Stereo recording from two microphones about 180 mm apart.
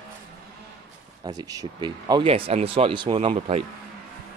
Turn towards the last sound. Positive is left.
turn(degrees=-35)  # may be behind; listen again after turning